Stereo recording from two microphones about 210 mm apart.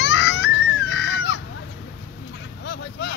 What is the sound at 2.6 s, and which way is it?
Vehicle, 55° left (ahead or behind).